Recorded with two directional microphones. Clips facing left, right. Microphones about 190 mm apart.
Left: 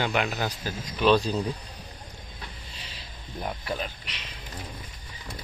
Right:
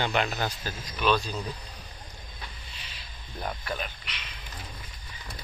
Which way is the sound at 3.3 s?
25° left (ahead or behind).